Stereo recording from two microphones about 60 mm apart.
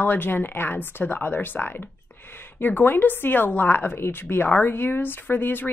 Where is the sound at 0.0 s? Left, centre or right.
Left.